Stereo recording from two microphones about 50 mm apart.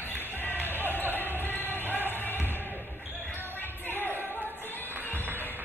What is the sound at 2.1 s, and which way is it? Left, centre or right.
Music, left.